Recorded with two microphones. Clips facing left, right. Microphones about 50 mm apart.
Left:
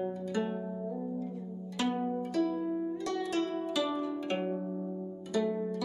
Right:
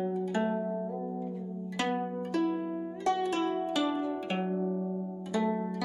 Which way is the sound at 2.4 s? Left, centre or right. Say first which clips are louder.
Even; right.